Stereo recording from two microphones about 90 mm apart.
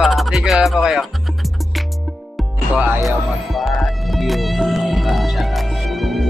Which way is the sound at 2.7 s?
15° right (ahead or behind).